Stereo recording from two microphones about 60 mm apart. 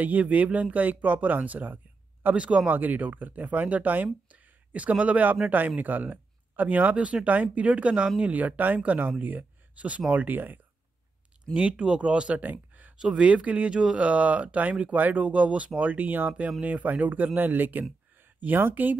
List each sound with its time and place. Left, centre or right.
0.0 s speech: right
2.7 s speech: right
11.5 s speech: centre
12.9 s speech: centre; by 18.9 s right